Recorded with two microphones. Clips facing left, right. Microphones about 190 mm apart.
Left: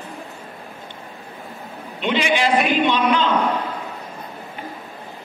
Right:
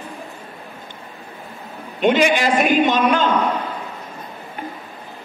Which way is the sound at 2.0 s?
50° right (ahead or behind).